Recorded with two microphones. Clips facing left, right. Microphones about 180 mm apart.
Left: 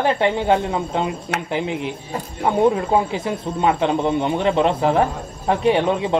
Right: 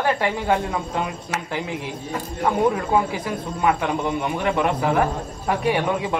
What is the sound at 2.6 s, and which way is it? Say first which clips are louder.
A man's voice: left 4 dB; 25° left (ahead or behind).